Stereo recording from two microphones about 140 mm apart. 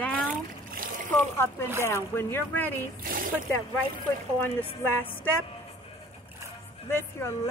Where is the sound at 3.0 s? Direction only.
85° right.